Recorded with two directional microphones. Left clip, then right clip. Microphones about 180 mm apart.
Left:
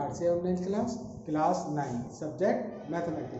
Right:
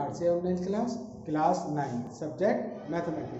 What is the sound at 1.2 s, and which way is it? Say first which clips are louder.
Speech: right 1 dB; 15° right (ahead or behind).